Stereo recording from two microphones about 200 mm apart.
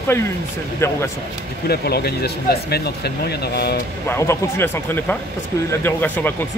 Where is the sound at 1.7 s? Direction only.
55° left (ahead or behind).